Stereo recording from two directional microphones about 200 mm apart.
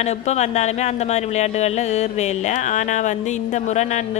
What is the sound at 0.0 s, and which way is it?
A man's voice, 35° left (ahead or behind).